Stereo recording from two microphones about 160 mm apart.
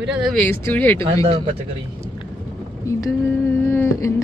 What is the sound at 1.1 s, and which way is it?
Speech, 35° right (ahead or behind).